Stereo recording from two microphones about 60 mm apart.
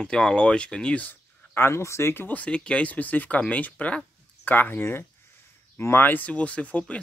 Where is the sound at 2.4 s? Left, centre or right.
Centre.